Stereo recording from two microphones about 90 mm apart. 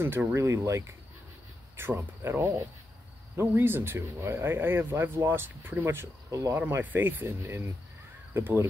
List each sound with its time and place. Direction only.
0.0 s speech: 25° right (ahead or behind)
6.3 s speech: 35° right (ahead or behind)
6.8 s speech: 20° right (ahead or behind)